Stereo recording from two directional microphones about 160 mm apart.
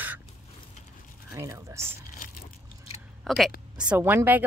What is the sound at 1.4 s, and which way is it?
Speech, 20° right (ahead or behind).